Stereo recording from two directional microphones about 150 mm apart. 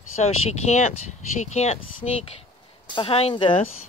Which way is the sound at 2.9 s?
35° left (ahead or behind).